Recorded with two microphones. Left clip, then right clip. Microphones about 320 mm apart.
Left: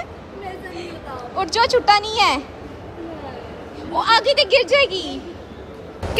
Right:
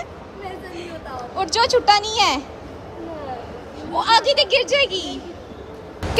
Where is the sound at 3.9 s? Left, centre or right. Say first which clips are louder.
Even; centre.